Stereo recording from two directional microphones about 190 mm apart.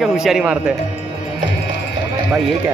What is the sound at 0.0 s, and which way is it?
Speech, centre (ahead or behind).